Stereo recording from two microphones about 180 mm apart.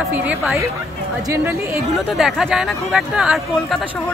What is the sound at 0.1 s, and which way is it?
Speech, 10° right (ahead or behind).